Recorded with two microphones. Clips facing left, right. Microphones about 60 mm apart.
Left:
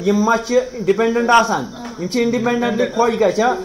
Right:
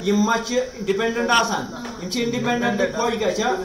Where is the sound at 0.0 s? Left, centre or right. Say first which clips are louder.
Left 4 dB; left.